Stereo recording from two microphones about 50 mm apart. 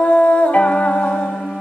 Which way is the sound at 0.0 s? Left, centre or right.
Left.